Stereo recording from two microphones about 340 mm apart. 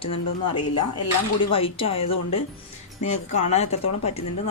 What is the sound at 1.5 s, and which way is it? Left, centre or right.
Speech, centre.